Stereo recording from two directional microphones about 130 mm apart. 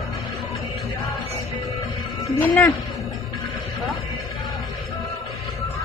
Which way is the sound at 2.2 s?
25° left (ahead or behind).